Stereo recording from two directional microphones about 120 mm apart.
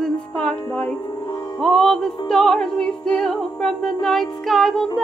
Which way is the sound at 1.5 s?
5° left (ahead or behind).